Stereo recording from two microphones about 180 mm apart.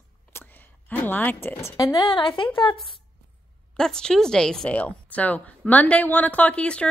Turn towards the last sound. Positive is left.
turn(degrees=5)  # may be behind; listen again after turning